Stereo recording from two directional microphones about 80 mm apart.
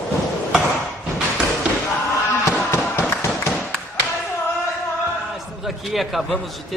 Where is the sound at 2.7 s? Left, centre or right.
Left.